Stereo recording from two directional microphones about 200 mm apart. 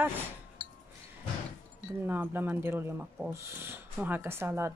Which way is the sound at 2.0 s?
10° right (ahead or behind).